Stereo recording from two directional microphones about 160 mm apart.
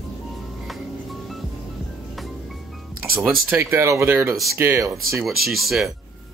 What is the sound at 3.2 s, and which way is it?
Speech, 10° right (ahead or behind).